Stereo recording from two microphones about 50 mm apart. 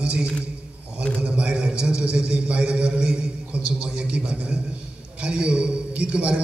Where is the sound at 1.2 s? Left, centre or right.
Right.